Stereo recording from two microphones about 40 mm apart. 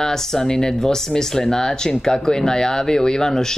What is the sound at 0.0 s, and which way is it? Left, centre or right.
Speech, centre.